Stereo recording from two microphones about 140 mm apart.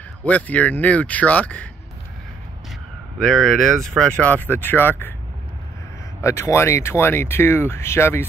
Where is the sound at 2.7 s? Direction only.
5° left (ahead or behind).